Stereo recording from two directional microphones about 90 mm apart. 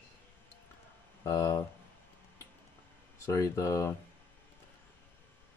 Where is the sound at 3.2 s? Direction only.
35° left (ahead or behind).